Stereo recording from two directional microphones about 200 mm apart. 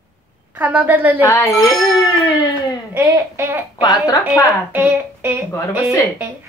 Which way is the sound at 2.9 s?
10° right (ahead or behind).